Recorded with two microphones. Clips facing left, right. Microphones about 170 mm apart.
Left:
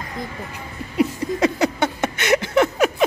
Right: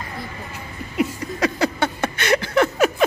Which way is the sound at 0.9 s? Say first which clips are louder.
Left 3 dB; 30° left (ahead or behind).